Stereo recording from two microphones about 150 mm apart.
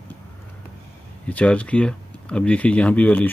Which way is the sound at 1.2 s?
10° left (ahead or behind).